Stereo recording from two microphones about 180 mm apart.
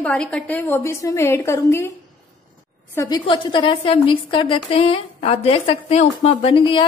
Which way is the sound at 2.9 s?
20° left (ahead or behind).